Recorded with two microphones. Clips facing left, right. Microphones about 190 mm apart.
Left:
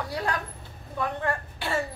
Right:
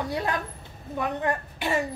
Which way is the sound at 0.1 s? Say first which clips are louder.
Right 2 dB; 20° right (ahead or behind).